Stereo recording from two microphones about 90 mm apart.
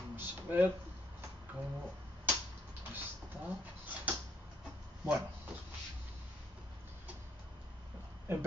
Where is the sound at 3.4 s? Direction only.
15° right (ahead or behind).